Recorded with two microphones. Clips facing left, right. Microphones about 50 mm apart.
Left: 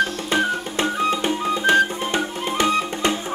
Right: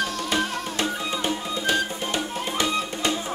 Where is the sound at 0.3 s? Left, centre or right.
Left.